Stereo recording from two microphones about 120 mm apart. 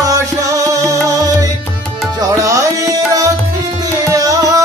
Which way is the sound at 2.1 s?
30° right (ahead or behind).